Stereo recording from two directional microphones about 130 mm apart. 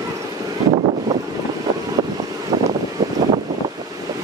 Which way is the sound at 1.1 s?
25° right (ahead or behind).